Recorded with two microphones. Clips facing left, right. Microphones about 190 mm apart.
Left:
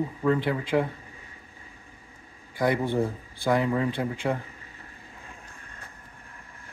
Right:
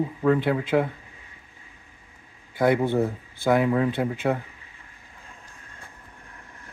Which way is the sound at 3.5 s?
5° right (ahead or behind).